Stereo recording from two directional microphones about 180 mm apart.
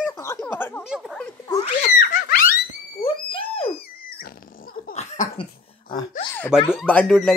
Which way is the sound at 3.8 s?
55° left (ahead or behind).